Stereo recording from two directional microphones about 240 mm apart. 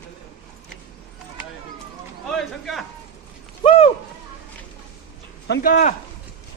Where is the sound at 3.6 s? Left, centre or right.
Left.